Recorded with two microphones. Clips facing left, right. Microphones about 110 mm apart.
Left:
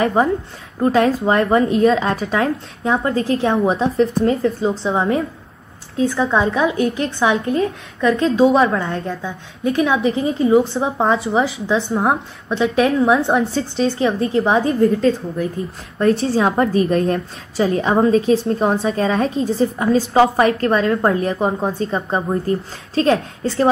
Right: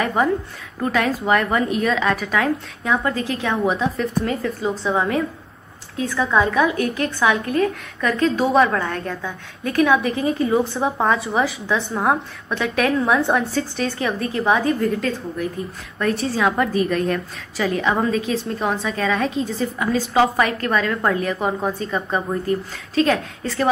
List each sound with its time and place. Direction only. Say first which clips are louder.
0.0 s a woman's voice: left 3 dB; 30° left (ahead or behind)